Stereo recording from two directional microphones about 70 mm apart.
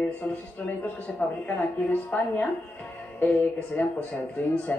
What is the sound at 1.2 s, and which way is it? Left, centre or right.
Speech, left.